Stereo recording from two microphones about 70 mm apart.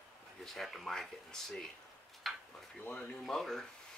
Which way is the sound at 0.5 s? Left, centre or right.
Centre.